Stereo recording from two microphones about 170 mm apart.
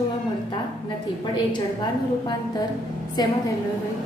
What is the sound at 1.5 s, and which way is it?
A woman's voice, 25° left (ahead or behind).